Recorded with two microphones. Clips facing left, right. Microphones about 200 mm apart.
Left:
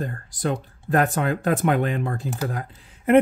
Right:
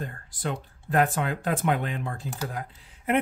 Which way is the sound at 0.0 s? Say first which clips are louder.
Left 6 dB; 45° left (ahead or behind).